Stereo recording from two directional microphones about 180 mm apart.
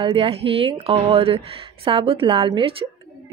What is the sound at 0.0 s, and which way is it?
Speech, 30° right (ahead or behind).